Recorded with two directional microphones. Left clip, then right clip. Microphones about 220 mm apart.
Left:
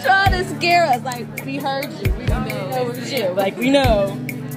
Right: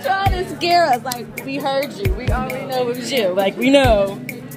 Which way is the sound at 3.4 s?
15° right (ahead or behind).